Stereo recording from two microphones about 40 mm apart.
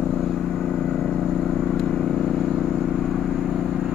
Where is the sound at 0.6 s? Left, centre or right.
Centre.